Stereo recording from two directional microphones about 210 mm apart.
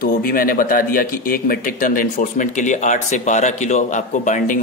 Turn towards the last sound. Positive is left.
turn(degrees=35)  # may be behind; listen again after turning